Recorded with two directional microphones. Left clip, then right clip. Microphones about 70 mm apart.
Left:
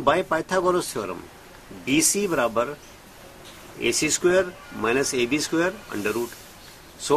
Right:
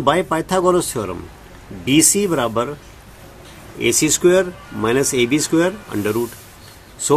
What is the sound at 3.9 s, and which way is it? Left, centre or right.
Speech, right.